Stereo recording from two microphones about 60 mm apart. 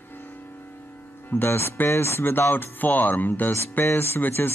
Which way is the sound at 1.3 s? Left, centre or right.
Left.